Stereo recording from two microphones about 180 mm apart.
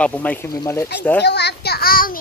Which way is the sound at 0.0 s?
10° left (ahead or behind).